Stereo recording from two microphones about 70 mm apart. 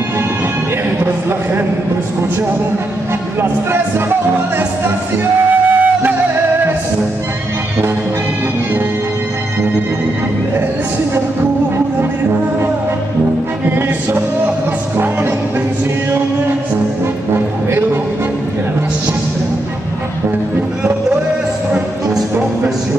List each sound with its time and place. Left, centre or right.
5.5 s flute: right
13.7 s music: right